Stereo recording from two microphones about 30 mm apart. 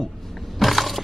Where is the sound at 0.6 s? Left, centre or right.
Centre.